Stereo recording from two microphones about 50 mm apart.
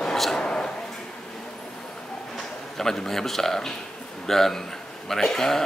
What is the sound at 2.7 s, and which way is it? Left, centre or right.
A man's voice, centre.